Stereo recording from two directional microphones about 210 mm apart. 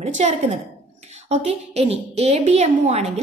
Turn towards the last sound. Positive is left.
turn(degrees=-30)  # may be behind; listen again after turning